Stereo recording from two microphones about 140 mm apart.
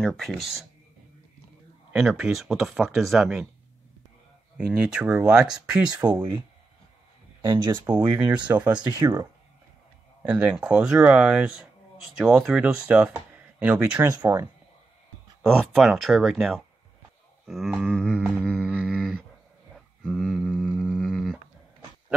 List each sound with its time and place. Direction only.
0.0 s speech: 5° left (ahead or behind)
1.9 s speech: 10° right (ahead or behind)
4.6 s a sound: 5° right (ahead or behind)
6.0 s speech: 30° right (ahead or behind)
7.4 s speech: 35° right (ahead or behind)
8.5 s a sound: 10° right (ahead or behind)
8.9 s speech: 20° right (ahead or behind)
10.2 s speech: 5° right (ahead or behind)
15.6 s speech: centre (ahead or behind)
17.5 s a sound: centre (ahead or behind)